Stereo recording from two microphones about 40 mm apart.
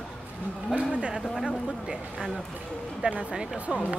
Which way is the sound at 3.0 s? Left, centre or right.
Right.